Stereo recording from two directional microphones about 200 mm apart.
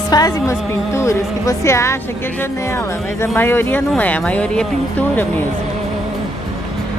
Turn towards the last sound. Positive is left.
turn(degrees=5)  # may be behind; listen again after turning